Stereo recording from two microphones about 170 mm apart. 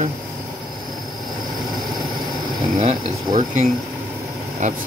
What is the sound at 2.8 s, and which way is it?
Speech, 50° right (ahead or behind).